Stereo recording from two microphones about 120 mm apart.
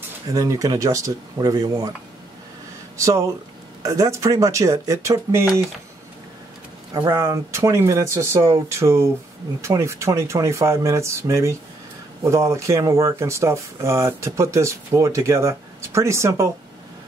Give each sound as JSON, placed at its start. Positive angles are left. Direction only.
{"t": 0.3, "sound": "speech", "side_deg": -30}
{"t": 3.0, "sound": "speech", "side_deg": -25}
{"t": 6.9, "sound": "speech", "side_deg": -30}